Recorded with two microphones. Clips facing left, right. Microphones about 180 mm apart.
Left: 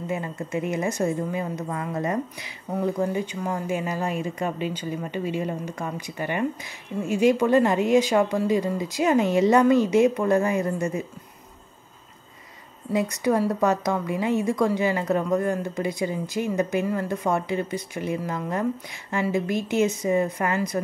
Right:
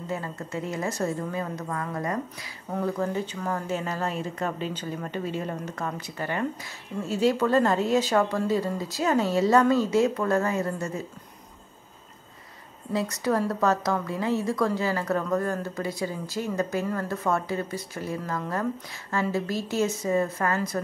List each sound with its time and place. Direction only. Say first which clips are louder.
0.0 s a woman's voice: left 3 dB; 15° left (ahead or behind)
12.9 s speech: left 3 dB; 15° left (ahead or behind)